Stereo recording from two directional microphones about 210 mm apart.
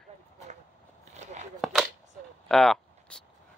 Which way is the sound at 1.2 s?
35° right (ahead or behind).